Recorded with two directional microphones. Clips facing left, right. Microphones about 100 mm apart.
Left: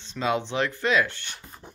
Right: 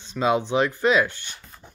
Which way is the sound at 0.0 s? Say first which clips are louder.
Right 4 dB; 15° right (ahead or behind).